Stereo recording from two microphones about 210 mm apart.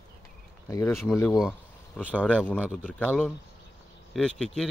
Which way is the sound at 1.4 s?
5° right (ahead or behind).